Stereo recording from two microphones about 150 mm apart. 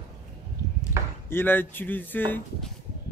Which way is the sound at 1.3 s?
15° left (ahead or behind).